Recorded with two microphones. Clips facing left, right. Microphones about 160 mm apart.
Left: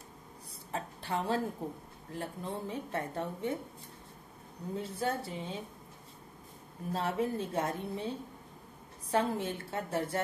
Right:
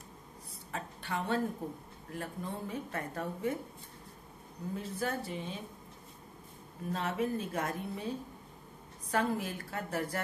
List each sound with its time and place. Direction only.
0.7 s a woman's voice: 30° left (ahead or behind)
4.7 s speech: 30° left (ahead or behind)
6.9 s speech: 30° left (ahead or behind)